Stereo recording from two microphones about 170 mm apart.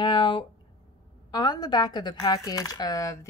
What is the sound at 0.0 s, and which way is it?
A woman's voice, 30° left (ahead or behind).